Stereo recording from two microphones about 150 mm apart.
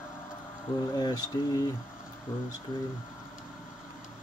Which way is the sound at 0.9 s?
25° left (ahead or behind).